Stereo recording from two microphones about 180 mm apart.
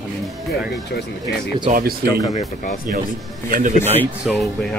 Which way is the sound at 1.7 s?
55° right (ahead or behind).